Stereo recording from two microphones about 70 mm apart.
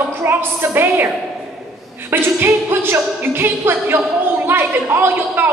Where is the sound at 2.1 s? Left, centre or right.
Right.